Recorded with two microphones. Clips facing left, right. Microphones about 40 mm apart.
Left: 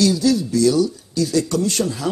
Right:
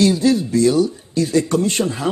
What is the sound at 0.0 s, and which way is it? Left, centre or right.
Speech, right.